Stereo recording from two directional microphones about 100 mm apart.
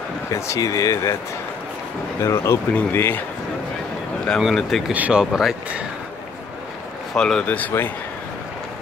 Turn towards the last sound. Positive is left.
turn(degrees=20)  # may be behind; listen again after turning